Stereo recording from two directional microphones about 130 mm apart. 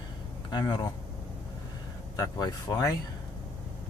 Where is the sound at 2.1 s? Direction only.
30° left (ahead or behind).